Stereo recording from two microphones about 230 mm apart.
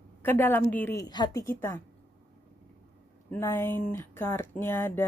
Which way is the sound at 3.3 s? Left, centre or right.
Centre.